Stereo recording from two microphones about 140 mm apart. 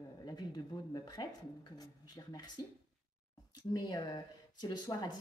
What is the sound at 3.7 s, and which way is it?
Speech, 30° left (ahead or behind).